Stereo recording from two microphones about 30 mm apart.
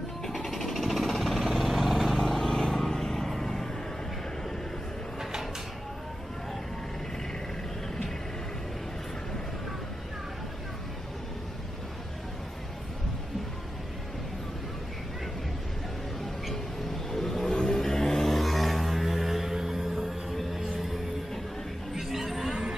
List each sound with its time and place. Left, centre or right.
0.3 s vehicle: centre
2.1 s vehicle: centre
17.1 s vehicle: centre
18.3 s music: centre
20.3 s a sound: centre
22.5 s a sound: centre